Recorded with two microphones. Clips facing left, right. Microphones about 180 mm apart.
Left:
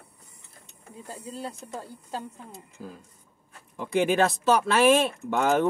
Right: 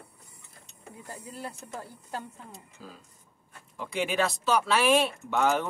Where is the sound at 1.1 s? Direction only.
20° left (ahead or behind).